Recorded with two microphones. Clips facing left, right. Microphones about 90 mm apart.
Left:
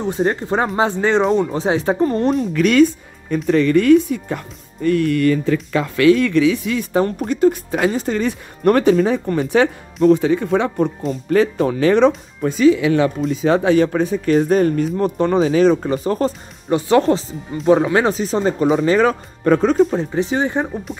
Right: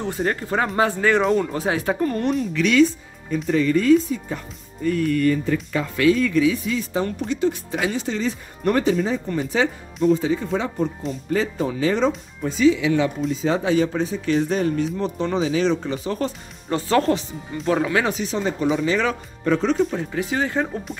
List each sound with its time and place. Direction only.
0.0 s speech: 20° left (ahead or behind)
2.3 s speech: 50° left (ahead or behind)
3.4 s speech: 65° left (ahead or behind)
7.1 s speech: 50° left (ahead or behind)
8.2 s speech: 60° left (ahead or behind)
12.4 s speech: 55° left (ahead or behind)
16.6 s speech: 20° left (ahead or behind); by 20.0 s 45° left (ahead or behind)
20.0 s speech: 25° left (ahead or behind)
20.7 s speech: 10° left (ahead or behind)